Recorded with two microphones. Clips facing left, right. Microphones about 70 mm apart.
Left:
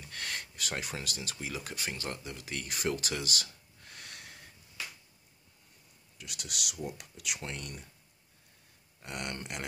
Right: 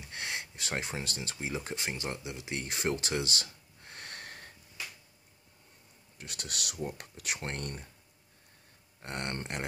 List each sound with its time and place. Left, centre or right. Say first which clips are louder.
0.0 s a sound: right 1 dB; right
0.7 s speech: right 2 dB; right
2.5 s speech: right 1 dB; right
3.8 s snort: right 4 dB; right
6.1 s speech: right 1 dB; right
9.0 s speech: right 2 dB; right